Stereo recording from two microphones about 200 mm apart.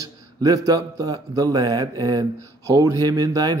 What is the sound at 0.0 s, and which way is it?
Speech, 15° right (ahead or behind).